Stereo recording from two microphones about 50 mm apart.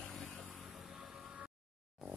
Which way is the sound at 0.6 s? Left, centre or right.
Centre.